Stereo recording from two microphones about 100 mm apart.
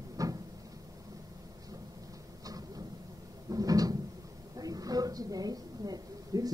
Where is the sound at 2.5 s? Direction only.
40° right (ahead or behind).